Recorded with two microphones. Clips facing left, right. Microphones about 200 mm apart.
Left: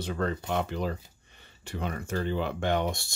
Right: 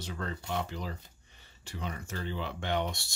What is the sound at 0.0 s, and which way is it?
Speech, 60° left (ahead or behind).